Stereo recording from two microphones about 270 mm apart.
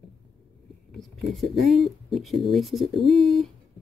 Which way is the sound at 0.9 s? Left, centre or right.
Centre.